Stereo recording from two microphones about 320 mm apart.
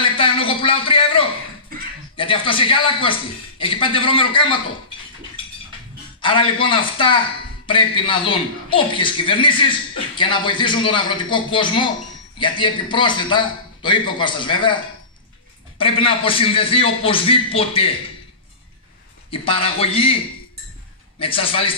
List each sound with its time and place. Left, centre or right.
0.0 s a sound: centre
2.1 s a man's voice: centre
6.2 s a man's voice: centre
15.8 s a man's voice: centre
19.3 s a man's voice: centre
21.2 s a man's voice: centre